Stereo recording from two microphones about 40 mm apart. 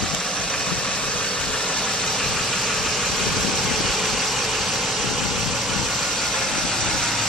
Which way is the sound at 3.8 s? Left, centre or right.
Centre.